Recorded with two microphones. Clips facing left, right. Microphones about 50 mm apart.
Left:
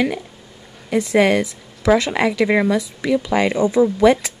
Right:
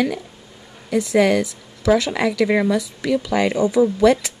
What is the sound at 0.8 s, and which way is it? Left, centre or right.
Speech, left.